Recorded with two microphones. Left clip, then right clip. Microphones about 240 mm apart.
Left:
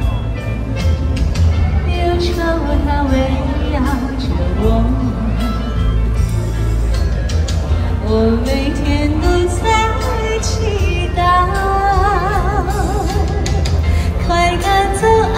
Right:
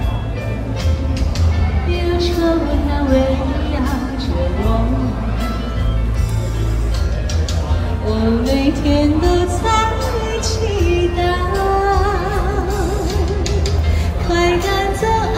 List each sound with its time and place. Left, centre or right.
2.0 s music: centre
2.9 s a sound: centre
8.1 s music: centre
10.7 s music: centre
14.2 s female singing: centre